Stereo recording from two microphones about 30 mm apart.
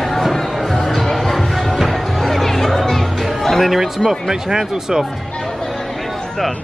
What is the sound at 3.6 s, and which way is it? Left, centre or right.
Speech, centre.